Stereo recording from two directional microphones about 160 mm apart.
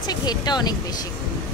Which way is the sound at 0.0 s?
25° left (ahead or behind).